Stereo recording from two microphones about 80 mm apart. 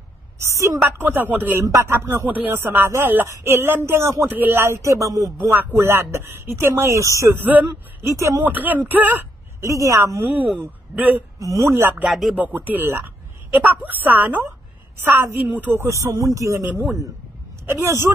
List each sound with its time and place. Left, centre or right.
0.8 s speech: right
4.3 s speech: right
5.6 s speech: right
6.7 s speech: right
8.5 s speech: right
9.6 s speech: right
10.2 s speech: right
11.3 s speech: right
12.1 s speech: centre
12.4 s speech: right
16.0 s speech: right
16.6 s speech: right